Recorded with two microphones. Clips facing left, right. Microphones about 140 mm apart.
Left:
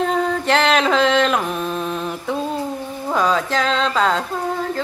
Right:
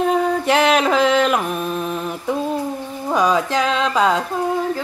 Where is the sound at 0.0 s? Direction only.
10° right (ahead or behind).